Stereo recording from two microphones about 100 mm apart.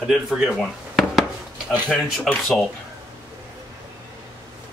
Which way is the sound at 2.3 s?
Centre (ahead or behind).